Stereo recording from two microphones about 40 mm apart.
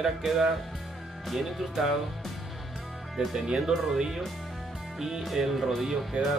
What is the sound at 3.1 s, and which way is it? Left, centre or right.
Speech, centre.